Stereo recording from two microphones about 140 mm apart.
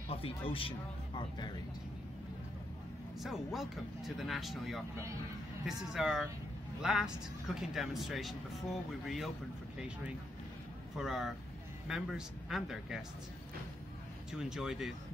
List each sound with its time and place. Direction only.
0.1 s speech: 40° left (ahead or behind)
3.2 s speech: centre (ahead or behind)
14.3 s speech: 5° right (ahead or behind)